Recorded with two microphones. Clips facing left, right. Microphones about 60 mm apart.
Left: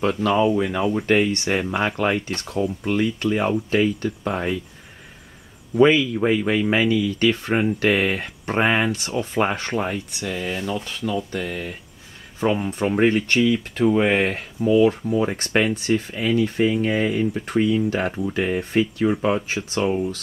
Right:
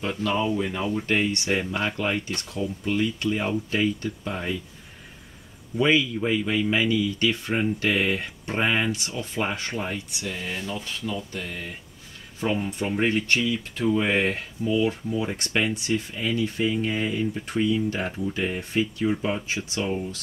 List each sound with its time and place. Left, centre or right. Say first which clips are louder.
0.2 s speech: left 4 dB; left
1.2 s speech: left 3 dB; left
4.2 s speech: left 6 dB; left
5.8 s speech: left 6 dB; left
11.3 s speech: left 6 dB; left
12.4 s speech: left 5 dB; left
12.7 s speech: left 5 dB; left
16.3 s speech: left 6 dB; left
16.8 s speech: left 5 dB; left